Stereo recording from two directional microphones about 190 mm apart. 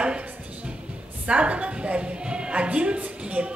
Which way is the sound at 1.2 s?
5° right (ahead or behind).